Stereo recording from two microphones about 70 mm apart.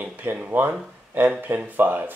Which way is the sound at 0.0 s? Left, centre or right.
Right.